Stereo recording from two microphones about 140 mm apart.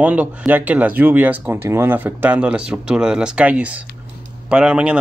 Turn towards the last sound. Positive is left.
turn(degrees=-10)  # may be behind; listen again after turning